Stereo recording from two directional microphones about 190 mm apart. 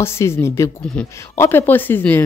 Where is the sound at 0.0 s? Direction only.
15° left (ahead or behind).